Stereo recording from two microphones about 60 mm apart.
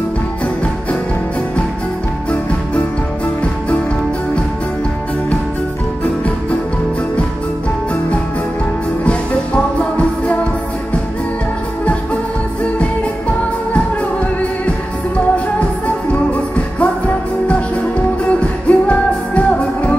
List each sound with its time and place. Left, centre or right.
16.1 s music: left
18.3 s music: left